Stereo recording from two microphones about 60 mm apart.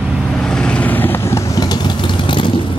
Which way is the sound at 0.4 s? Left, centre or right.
Centre.